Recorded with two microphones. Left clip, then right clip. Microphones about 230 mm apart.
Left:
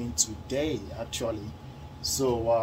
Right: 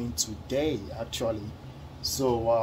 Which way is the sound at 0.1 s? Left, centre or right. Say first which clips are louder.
Left 1 dB; right.